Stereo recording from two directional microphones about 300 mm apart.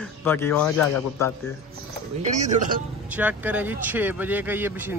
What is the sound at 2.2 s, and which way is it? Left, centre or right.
Speech, right.